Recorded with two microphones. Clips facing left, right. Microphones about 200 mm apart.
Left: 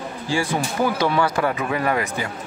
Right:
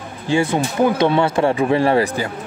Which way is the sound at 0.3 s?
20° right (ahead or behind).